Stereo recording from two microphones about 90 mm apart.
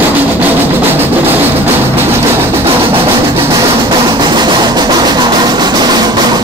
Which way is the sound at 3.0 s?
70° right (ahead or behind).